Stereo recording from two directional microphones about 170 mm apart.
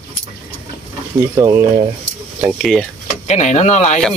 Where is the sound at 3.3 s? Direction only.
40° left (ahead or behind).